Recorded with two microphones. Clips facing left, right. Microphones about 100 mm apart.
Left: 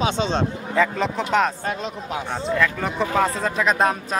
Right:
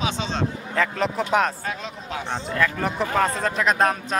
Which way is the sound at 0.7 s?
Centre (ahead or behind).